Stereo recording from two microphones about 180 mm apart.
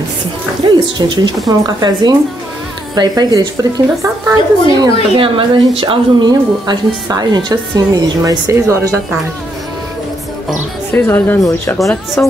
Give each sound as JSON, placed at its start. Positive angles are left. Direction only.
{"t": 0.7, "sound": "a woman's voice", "side_deg": -25}
{"t": 5.1, "sound": "a woman's voice", "side_deg": -30}
{"t": 10.9, "sound": "speech", "side_deg": 10}
{"t": 12.2, "sound": "speech", "side_deg": 5}